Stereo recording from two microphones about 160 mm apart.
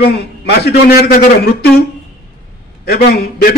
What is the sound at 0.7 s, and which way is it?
A man's voice, 80° left.